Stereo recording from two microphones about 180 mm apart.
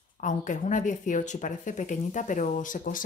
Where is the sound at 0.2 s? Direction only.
45° left (ahead or behind).